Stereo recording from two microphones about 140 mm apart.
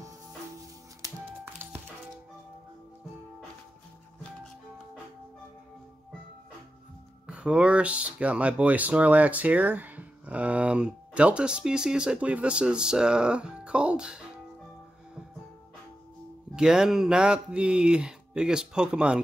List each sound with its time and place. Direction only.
1.0 s music: 15° right (ahead or behind)
7.2 s speech: 5° right (ahead or behind)
16.5 s speech: 5° right (ahead or behind)